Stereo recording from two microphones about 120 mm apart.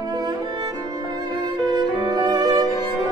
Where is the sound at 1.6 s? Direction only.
35° right (ahead or behind).